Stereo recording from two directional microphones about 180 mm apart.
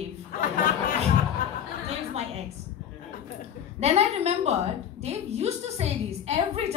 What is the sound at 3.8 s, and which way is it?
A woman's voice, 35° right (ahead or behind).